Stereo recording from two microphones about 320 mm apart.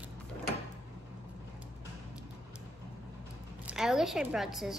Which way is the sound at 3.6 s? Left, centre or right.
Centre.